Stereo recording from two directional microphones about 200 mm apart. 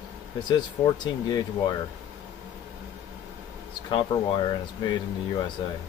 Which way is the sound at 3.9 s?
25° left (ahead or behind).